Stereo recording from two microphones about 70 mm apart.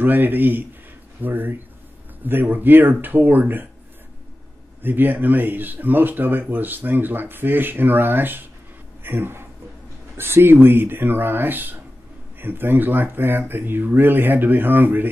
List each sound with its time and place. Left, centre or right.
0.0 s speech: right
4.8 s speech: right